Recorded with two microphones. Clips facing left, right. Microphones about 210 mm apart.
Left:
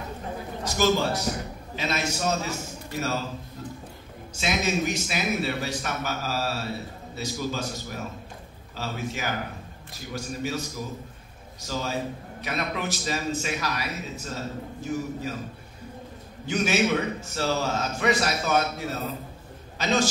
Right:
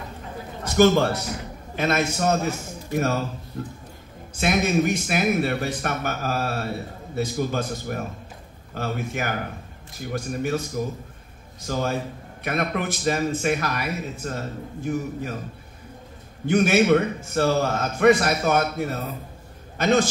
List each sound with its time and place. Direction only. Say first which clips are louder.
0.7 s a man's voice: right 6 dB; 55° right (ahead or behind)
4.4 s a man's voice: right 5 dB; 55° right (ahead or behind)
16.4 s a man's voice: right 6 dB; 55° right (ahead or behind)